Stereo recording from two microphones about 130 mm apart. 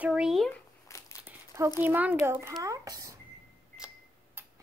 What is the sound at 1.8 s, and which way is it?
A child's voice, 15° right (ahead or behind).